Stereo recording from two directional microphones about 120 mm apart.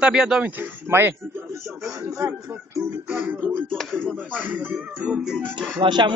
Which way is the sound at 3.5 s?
5° left (ahead or behind).